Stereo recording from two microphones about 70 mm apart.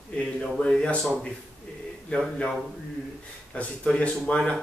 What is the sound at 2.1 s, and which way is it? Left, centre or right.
Speech, centre.